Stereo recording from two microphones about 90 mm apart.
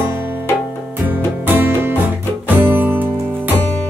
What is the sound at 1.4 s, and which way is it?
Music, 20° right (ahead or behind).